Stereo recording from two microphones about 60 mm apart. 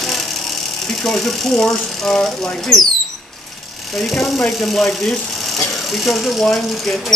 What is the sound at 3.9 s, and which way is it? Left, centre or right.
Speech, centre.